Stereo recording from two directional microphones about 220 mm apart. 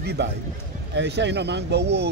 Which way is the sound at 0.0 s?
50° right (ahead or behind).